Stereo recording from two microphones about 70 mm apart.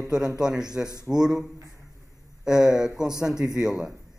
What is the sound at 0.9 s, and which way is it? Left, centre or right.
Speech, right.